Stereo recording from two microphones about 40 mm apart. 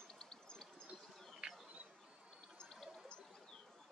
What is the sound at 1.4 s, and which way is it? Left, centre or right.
Bird, right.